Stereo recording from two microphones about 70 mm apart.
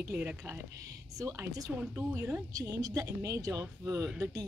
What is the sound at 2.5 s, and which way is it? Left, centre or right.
Speech, right.